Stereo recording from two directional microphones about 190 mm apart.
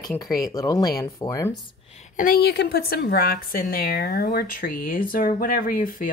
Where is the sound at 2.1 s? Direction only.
50° left (ahead or behind).